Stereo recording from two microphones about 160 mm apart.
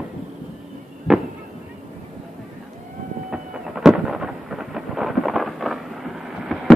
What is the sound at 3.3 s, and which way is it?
Thunder, 5° right (ahead or behind).